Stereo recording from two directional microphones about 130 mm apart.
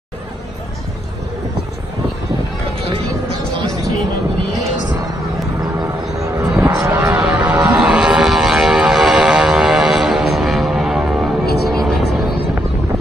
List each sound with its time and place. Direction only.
5.6 s music: 30° right (ahead or behind)
6.5 s vehicle: 20° right (ahead or behind); by 12.3 s centre (ahead or behind)